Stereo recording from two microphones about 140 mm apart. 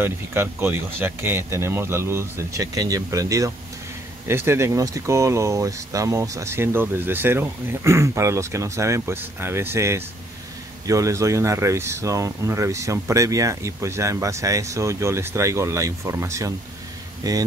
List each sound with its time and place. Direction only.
0.0 s speech: 15° right (ahead or behind)